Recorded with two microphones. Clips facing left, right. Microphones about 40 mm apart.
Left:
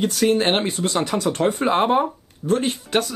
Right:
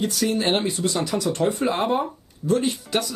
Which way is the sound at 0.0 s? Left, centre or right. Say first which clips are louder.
Left 4 dB; left.